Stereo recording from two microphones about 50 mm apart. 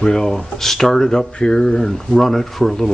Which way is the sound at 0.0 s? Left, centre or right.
Centre.